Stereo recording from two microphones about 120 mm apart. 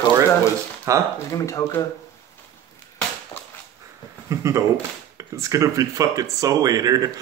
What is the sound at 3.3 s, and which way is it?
Dog, 40° left (ahead or behind).